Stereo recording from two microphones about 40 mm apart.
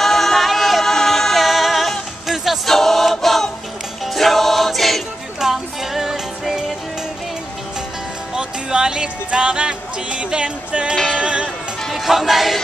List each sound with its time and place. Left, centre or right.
0.0 s music: centre
2.6 s choir: centre
4.0 s music: centre
5.4 s music: centre
8.4 s music: right
11.9 s music: centre